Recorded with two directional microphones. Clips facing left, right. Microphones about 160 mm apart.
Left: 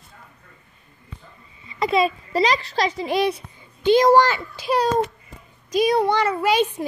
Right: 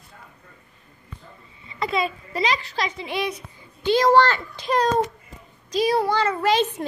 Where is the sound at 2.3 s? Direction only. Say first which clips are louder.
Left 4 dB; 35° left (ahead or behind).